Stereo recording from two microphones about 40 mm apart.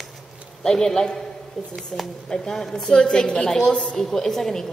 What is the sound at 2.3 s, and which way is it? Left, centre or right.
A woman's voice, centre.